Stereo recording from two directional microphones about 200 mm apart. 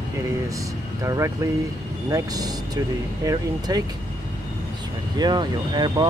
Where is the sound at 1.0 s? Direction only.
15° right (ahead or behind).